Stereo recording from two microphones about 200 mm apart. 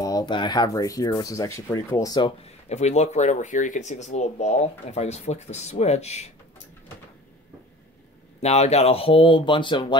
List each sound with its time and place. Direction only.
0.0 s speech: 20° left (ahead or behind)
2.7 s speech: 35° left (ahead or behind)
8.4 s speech: 30° left (ahead or behind)